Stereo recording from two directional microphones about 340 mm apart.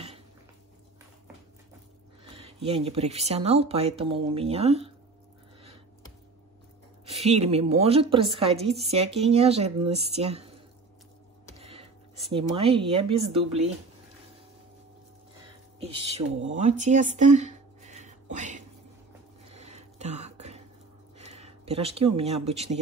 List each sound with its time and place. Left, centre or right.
2.2 s speech: centre
7.1 s speech: centre
11.5 s a sound: centre
12.3 s speech: centre
15.8 s speech: centre
19.5 s a sound: centre
21.2 s speech: centre